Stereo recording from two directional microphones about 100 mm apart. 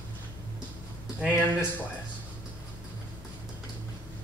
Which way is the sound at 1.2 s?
15° left (ahead or behind).